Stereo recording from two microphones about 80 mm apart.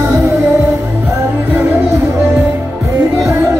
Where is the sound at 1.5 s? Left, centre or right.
Right.